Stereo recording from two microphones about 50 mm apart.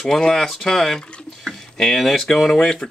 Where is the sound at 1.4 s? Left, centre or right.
Centre.